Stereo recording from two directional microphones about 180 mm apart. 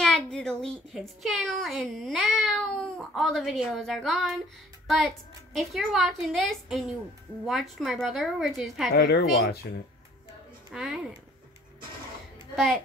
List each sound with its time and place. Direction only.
0.0 s a child's voice: 5° left (ahead or behind)
8.9 s speech: 60° left (ahead or behind)
10.7 s speech: 5° right (ahead or behind)
12.5 s a woman's voice: centre (ahead or behind)